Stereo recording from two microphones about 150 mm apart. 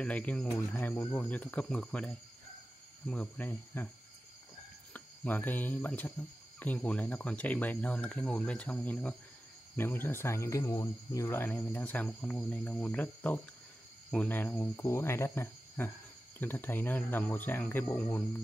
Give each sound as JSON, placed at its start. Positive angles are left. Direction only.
{"t": 0.0, "sound": "speech", "side_deg": 10}
{"t": 4.9, "sound": "speech", "side_deg": 10}